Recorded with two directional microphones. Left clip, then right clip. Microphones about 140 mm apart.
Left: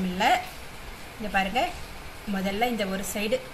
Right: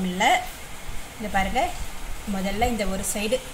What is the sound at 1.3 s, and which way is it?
Speech, 5° right (ahead or behind).